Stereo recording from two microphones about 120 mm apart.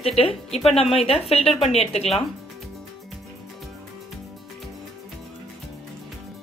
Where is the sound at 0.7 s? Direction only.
55° left (ahead or behind).